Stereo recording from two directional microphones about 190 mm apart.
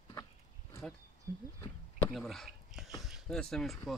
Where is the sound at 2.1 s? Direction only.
Centre (ahead or behind).